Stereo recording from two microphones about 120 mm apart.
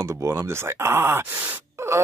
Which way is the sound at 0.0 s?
25° right (ahead or behind).